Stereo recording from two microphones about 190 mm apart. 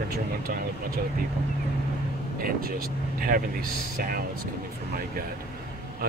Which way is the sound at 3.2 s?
50° right (ahead or behind).